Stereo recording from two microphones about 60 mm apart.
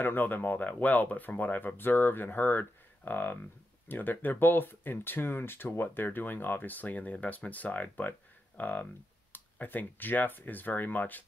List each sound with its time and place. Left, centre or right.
0.0 s speech: left